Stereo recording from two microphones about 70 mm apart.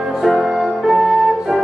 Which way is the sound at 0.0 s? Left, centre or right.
Centre.